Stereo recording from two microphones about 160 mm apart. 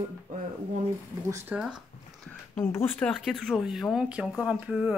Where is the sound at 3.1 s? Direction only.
Centre (ahead or behind).